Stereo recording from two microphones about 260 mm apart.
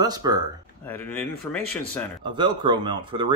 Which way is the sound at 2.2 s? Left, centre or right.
Centre.